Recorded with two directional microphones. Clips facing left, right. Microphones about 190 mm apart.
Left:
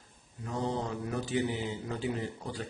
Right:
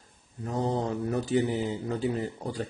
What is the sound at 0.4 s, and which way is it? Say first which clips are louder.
Mantra: right 5 dB; 40° right (ahead or behind).